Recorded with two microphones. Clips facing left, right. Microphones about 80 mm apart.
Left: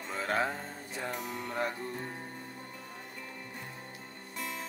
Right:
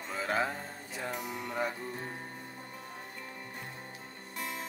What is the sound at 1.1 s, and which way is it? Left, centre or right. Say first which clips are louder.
Music: right 1 dB; centre.